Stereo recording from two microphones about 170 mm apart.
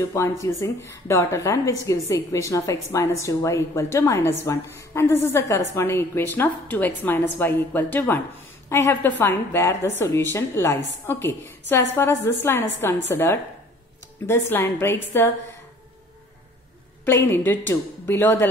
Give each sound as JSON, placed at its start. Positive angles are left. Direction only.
{"t": 0.0, "sound": "speech", "side_deg": 15}
{"t": 17.0, "sound": "speech", "side_deg": 10}